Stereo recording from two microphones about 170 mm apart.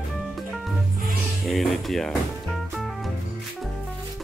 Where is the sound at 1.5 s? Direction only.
Centre (ahead or behind).